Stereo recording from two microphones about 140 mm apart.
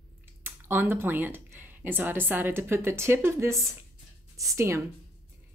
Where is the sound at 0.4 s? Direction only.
15° right (ahead or behind).